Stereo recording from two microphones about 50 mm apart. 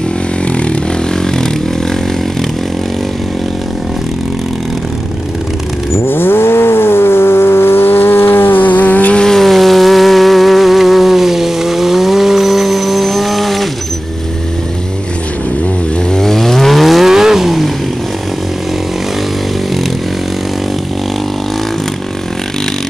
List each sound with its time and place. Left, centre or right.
6.0 s vehicle: left
9.2 s a sound: centre
16.1 s vehicle: centre